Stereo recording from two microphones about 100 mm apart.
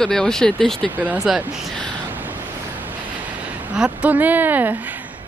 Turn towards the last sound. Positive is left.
turn(degrees=-20)  # may be behind; listen again after turning